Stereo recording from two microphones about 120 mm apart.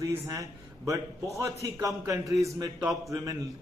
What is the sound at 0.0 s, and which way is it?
A man's voice, 30° right (ahead or behind).